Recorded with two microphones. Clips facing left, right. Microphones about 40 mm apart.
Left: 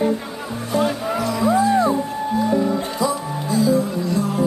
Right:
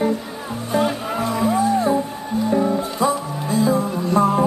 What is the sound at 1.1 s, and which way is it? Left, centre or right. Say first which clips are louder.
Music: even; right.